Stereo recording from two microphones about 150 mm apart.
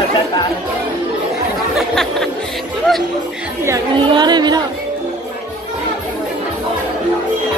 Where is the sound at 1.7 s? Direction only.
Centre (ahead or behind).